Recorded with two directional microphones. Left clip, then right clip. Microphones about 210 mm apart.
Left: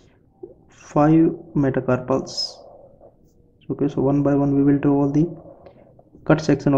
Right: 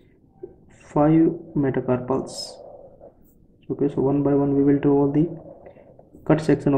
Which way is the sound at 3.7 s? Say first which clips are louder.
Left 1 dB; 20° left (ahead or behind).